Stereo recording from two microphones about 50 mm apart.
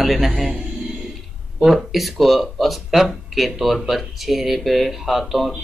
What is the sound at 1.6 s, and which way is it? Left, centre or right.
Speech, centre.